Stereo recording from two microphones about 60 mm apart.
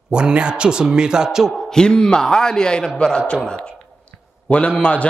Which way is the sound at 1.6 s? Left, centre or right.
Centre.